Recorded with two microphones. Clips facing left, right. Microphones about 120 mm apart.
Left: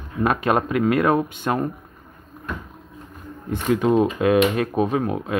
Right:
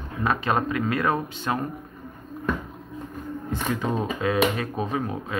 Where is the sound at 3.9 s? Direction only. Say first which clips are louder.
Left 6 dB; 60° left (ahead or behind).